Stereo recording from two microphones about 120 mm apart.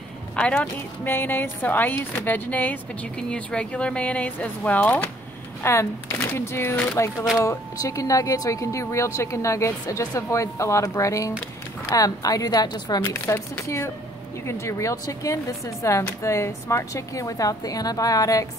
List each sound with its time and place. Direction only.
0.4 s a woman's voice: 10° left (ahead or behind); by 13.0 s 35° left (ahead or behind)
13.0 s speech: 20° left (ahead or behind)